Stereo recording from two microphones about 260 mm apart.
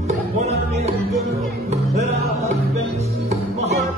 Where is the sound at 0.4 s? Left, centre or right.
Right.